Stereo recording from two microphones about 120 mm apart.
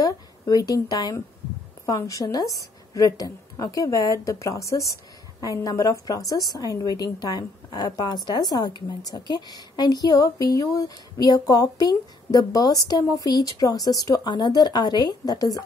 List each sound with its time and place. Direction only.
0.0 s a woman's voice: 30° left (ahead or behind)